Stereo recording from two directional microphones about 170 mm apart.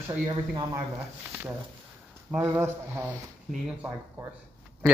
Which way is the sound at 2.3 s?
10° right (ahead or behind).